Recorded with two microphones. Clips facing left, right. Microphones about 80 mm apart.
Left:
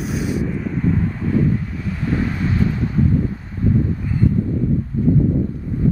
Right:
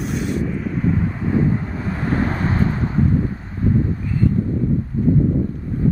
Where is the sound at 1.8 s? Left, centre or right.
Right.